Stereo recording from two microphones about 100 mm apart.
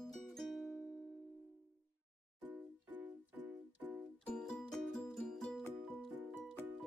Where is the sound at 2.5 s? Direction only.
20° right (ahead or behind).